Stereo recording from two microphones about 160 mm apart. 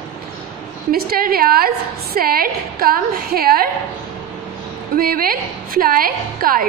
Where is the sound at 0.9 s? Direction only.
70° right (ahead or behind).